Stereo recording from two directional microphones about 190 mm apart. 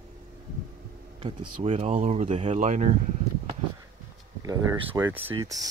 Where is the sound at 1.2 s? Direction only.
35° right (ahead or behind).